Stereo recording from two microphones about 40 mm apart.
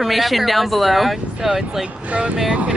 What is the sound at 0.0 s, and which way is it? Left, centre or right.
Speech, centre.